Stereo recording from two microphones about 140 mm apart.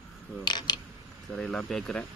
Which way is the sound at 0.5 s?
30° left (ahead or behind).